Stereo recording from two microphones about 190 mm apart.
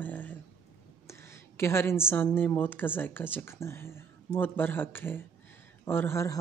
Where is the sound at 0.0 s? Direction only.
10° left (ahead or behind).